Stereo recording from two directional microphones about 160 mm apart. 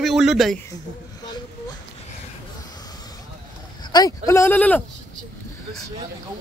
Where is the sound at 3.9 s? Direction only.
20° left (ahead or behind).